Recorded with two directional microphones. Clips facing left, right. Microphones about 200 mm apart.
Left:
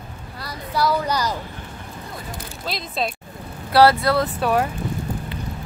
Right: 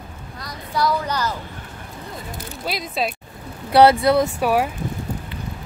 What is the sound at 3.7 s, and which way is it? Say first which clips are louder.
Speech: right 2 dB; 20° right (ahead or behind).